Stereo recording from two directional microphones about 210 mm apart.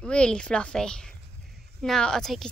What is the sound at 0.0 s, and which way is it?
Speech, 5° left (ahead or behind).